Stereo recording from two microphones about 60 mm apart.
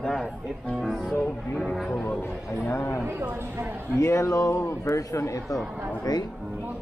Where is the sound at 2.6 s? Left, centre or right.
Left.